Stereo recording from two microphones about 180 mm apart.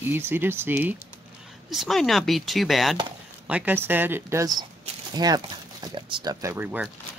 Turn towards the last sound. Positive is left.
turn(degrees=-10)  # may be behind; listen again after turning